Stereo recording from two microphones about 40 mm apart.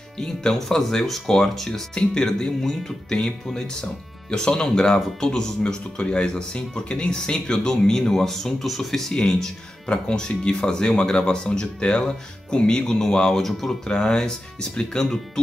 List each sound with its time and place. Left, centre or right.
0.2 s speech: left
0.6 s speech: centre